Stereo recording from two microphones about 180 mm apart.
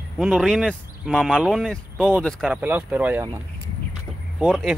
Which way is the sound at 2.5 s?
10° right (ahead or behind).